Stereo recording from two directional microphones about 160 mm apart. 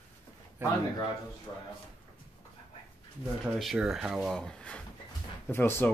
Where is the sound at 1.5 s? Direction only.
30° left (ahead or behind).